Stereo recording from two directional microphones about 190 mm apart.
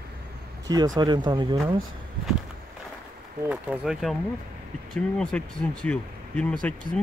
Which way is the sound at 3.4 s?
5° right (ahead or behind).